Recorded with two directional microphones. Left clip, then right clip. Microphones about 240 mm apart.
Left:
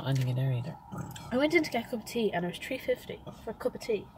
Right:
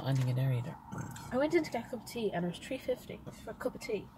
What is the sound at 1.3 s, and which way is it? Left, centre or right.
A woman's voice, left.